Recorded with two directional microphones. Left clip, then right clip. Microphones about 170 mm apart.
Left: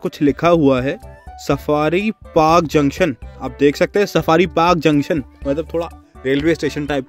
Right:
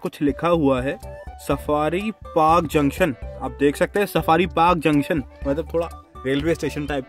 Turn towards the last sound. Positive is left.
turn(degrees=5)  # may be behind; listen again after turning